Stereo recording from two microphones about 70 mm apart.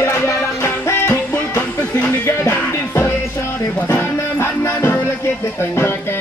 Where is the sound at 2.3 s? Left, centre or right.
Left.